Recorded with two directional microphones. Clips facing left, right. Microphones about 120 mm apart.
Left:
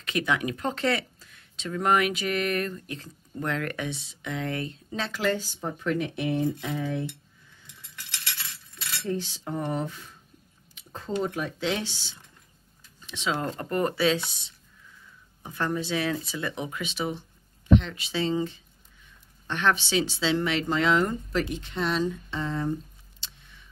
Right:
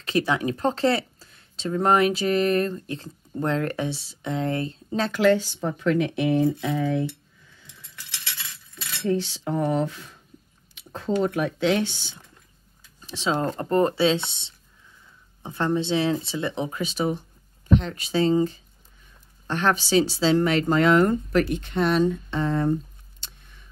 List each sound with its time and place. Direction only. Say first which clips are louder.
0.0 s speech: right 4 dB; 30° right (ahead or behind)
5.1 s speech: right 8 dB; 75° right (ahead or behind); by 6.5 s 90° right
9.0 s speech: right 7 dB; 80° right
10.7 s a sound: right 6 dB; 70° right (ahead or behind)
11.2 s speech: right 6 dB; 60° right (ahead or behind)
13.0 s speech: right 4 dB; 35° right (ahead or behind); by 22.8 s 55° right (ahead or behind)
23.2 s a sound: right 1 dB; 50° right (ahead or behind)